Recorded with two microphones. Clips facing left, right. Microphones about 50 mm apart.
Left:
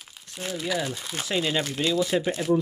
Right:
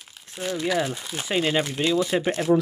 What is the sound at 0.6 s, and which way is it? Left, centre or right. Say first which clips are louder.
Speech: right 4 dB; centre.